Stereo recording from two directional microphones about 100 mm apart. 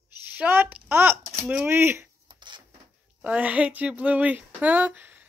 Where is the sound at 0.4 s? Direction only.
20° right (ahead or behind).